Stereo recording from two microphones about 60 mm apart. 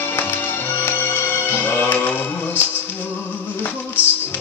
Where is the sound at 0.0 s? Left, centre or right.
Left.